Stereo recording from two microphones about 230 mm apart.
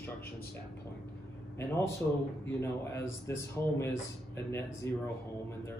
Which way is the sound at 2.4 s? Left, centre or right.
Centre.